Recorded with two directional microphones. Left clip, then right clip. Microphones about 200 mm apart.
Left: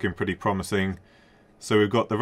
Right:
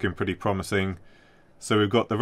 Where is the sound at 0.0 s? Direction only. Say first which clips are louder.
Left 1 dB; 65° right (ahead or behind).